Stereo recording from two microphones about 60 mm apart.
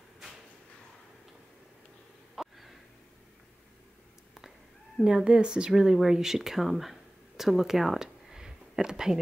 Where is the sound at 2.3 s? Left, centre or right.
Centre.